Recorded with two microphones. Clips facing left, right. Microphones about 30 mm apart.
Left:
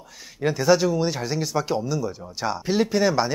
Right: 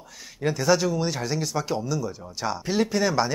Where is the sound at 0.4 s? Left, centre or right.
Centre.